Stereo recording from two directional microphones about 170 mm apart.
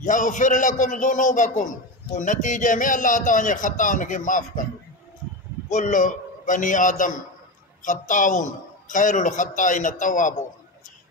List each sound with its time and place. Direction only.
0.0 s speech: 50° left (ahead or behind)
5.7 s speech: 50° left (ahead or behind)